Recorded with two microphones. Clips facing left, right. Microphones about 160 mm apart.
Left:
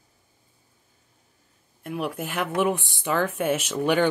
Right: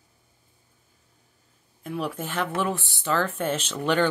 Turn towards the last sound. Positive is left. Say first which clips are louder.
# left 2 dB
turn(degrees=10)  # may be behind; listen again after turning